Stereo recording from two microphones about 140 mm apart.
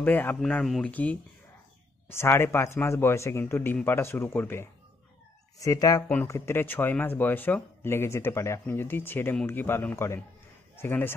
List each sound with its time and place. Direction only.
0.0 s speech: 10° left (ahead or behind)
5.6 s speech: 25° left (ahead or behind)
6.0 s speech: 15° left (ahead or behind)